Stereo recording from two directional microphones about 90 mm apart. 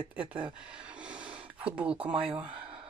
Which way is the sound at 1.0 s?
10° right (ahead or behind).